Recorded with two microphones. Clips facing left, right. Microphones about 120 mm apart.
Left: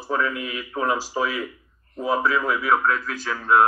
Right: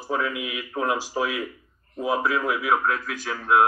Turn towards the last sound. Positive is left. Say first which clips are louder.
# left 2 dB
turn(degrees=-5)  # may be behind; listen again after turning